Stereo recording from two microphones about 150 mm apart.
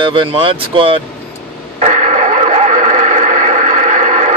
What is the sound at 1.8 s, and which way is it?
Radio, 50° right (ahead or behind).